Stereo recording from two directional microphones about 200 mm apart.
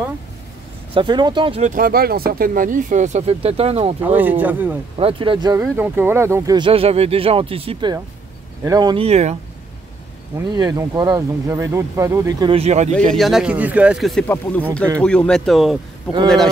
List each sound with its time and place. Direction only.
0.9 s speech: 20° right (ahead or behind)
1.7 s speech: 45° right (ahead or behind); by 3.9 s 30° right (ahead or behind)
4.0 s speech: 10° right (ahead or behind)
4.9 s speech: 25° right (ahead or behind)
10.3 s speech: 20° right (ahead or behind)
13.1 s speech: centre (ahead or behind)
14.2 s speech: 10° left (ahead or behind)